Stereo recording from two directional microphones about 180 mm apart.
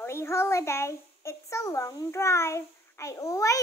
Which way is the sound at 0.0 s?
15° left (ahead or behind).